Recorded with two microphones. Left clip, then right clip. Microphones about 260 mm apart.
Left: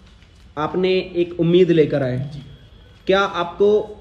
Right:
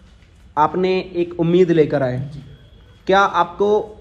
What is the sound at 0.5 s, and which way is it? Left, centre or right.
Speech, centre.